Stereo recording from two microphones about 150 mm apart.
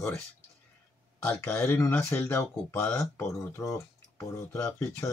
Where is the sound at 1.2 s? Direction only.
10° left (ahead or behind).